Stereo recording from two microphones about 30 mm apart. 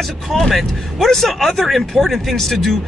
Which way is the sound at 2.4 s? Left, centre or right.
Centre.